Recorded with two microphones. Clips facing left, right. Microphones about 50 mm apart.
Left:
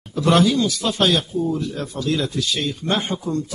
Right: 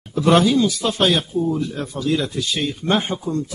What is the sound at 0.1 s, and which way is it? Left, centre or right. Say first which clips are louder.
Speech: right 2 dB; centre.